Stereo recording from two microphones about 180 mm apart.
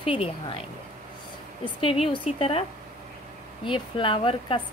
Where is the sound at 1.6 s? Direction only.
30° left (ahead or behind).